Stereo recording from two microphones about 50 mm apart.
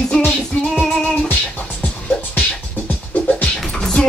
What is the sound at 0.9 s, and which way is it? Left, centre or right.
Music, centre.